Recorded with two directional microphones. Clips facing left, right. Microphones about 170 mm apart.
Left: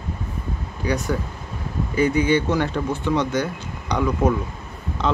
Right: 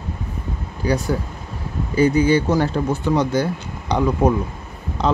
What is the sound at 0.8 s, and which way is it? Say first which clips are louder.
Speech: right 3 dB; 35° right (ahead or behind).